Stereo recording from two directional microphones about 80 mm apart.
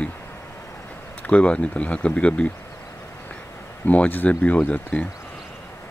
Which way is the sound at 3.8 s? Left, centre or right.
Centre.